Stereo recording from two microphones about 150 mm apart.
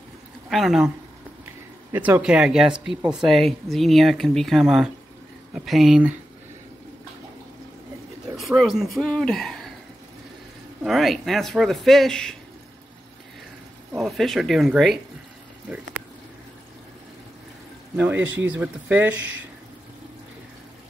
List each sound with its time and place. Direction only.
0.5 s speech: centre (ahead or behind)
1.9 s speech: 15° right (ahead or behind)
8.4 s speech: centre (ahead or behind)
10.8 s speech: centre (ahead or behind)
13.9 s speech: centre (ahead or behind)
17.9 s speech: 10° right (ahead or behind)